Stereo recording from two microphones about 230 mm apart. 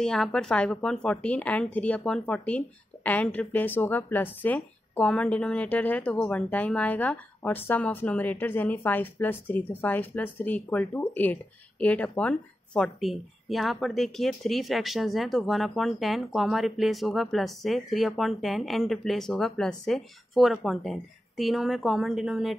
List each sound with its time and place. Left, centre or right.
0.0 s a woman's voice: centre